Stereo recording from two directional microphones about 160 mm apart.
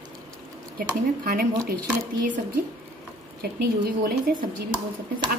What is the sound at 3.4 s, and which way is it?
Speech, 75° right (ahead or behind).